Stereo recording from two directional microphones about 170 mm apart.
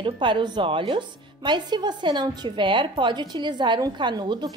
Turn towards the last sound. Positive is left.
turn(degrees=-25)  # may be behind; listen again after turning